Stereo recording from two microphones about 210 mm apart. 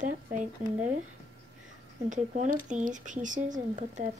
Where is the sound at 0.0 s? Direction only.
35° right (ahead or behind).